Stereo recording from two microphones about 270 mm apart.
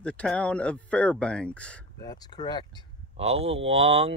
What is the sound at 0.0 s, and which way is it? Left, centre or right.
Speech, centre.